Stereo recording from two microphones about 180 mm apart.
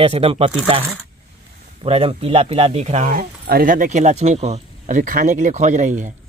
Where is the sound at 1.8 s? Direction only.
30° right (ahead or behind).